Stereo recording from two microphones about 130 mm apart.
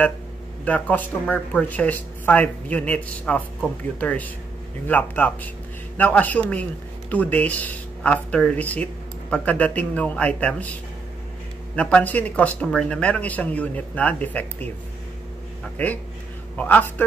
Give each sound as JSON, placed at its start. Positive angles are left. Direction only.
{"t": 0.7, "sound": "speech", "side_deg": 10}
{"t": 11.7, "sound": "speech", "side_deg": 10}
{"t": 15.8, "sound": "a man's voice", "side_deg": 10}